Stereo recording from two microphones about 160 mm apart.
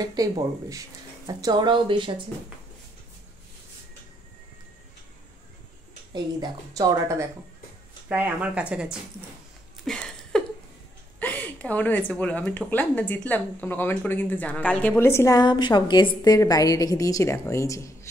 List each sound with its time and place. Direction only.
0.0 s speech: 25° right (ahead or behind)
6.1 s speech: 25° right (ahead or behind); by 8.9 s 5° right (ahead or behind)
9.8 s a sound: 5° left (ahead or behind)
11.1 s a woman's voice: 10° left (ahead or behind)